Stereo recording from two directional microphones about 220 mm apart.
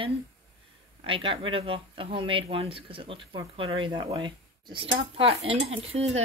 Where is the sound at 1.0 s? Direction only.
25° right (ahead or behind).